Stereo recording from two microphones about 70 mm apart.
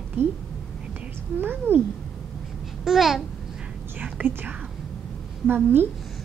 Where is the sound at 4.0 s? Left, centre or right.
Right.